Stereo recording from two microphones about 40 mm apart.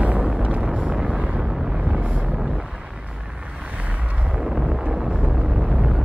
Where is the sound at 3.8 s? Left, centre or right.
Right.